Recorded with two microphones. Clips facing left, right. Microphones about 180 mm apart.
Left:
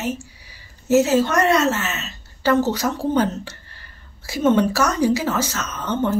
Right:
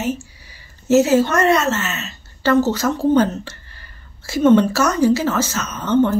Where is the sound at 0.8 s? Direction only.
10° left (ahead or behind).